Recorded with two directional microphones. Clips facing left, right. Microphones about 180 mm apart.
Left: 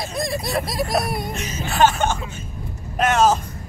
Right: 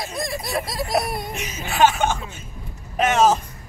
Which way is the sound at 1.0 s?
10° left (ahead or behind).